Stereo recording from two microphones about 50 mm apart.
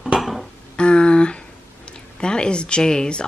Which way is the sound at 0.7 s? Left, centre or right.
Centre.